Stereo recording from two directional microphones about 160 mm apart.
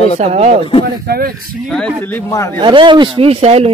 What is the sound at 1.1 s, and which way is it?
Speech, 75° right (ahead or behind).